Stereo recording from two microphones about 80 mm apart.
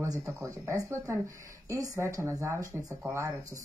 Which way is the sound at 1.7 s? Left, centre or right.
Right.